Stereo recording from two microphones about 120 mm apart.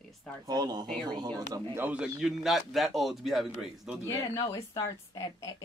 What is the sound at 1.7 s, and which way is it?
Speech, 15° right (ahead or behind).